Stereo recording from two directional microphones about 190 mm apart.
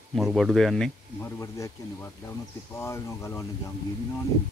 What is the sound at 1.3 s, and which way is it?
Speech, 15° left (ahead or behind).